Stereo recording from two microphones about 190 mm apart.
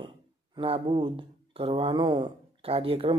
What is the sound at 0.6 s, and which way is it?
Speech, 30° right (ahead or behind).